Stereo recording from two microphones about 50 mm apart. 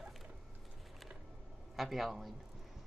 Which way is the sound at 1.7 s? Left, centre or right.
Centre.